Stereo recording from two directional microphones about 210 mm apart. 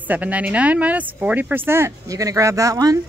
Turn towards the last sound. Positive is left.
turn(degrees=-15)  # may be behind; listen again after turning